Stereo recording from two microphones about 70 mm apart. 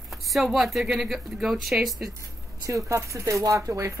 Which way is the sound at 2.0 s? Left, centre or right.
Right.